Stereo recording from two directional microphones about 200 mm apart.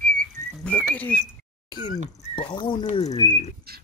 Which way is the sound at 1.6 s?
20° left (ahead or behind).